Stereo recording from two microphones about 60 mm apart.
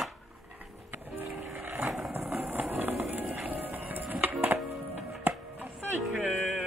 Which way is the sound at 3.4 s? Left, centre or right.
Right.